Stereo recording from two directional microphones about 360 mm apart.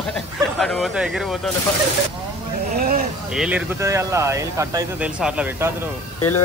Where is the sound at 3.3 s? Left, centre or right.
Centre.